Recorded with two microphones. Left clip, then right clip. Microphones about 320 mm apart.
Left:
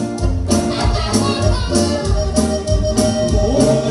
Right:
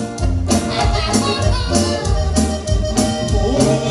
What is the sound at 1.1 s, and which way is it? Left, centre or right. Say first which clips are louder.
Music: even; right.